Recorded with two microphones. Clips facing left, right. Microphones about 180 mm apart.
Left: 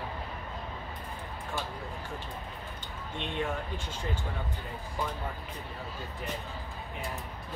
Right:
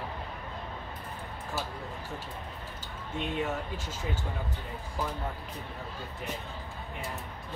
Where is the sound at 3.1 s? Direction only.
5° right (ahead or behind).